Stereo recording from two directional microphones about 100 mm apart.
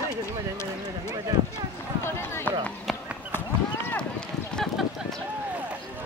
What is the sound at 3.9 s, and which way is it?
Run, 10° left (ahead or behind).